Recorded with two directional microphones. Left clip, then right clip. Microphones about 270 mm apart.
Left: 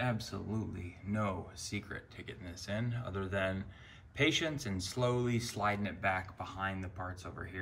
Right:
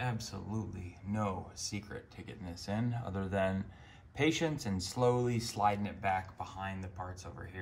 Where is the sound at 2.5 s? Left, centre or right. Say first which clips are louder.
Right 2 dB; centre.